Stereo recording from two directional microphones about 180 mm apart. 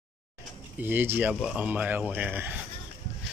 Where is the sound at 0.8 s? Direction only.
10° right (ahead or behind).